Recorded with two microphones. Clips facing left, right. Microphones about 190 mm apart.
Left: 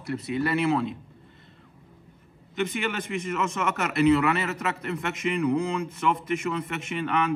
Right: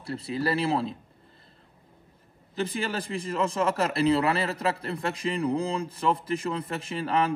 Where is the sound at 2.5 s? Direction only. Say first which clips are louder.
Left 1 dB; 35° right (ahead or behind).